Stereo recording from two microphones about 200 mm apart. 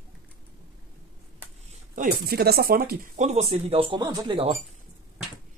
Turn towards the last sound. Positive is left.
turn(degrees=-25)  # may be behind; listen again after turning